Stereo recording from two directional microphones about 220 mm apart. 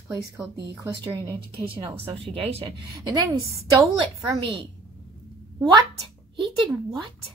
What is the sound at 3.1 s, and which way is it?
A woman's voice, 15° right (ahead or behind).